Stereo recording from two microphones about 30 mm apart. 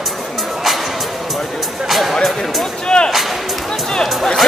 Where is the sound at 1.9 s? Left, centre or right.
Centre.